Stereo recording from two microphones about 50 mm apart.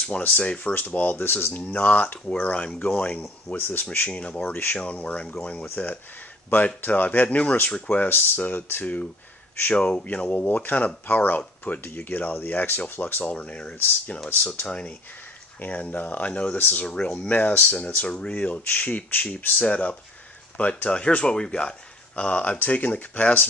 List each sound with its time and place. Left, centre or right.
0.3 s speech: left
0.7 s speech: left
1.1 s speech: left
1.5 s speech: left
3.5 s speech: left
3.8 s speech: left
4.1 s speech: left
6.5 s speech: left
8.1 s speech: left
13.2 s speech: left
15.6 s speech: left
17.3 s speech: left